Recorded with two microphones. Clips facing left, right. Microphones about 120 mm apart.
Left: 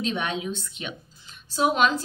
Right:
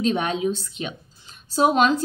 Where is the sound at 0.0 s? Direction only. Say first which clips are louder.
Right 6 dB; 40° right (ahead or behind).